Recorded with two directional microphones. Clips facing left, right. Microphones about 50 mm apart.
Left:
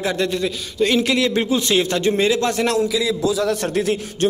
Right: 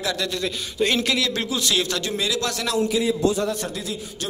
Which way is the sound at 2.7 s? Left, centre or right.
Left.